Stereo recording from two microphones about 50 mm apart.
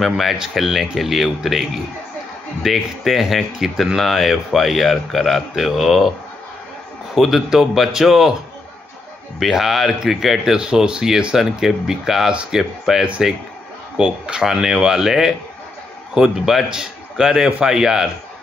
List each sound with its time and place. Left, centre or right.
0.0 s speech: centre
7.2 s speech: centre
9.4 s speech: centre
12.3 s speech: centre
12.5 s speech: centre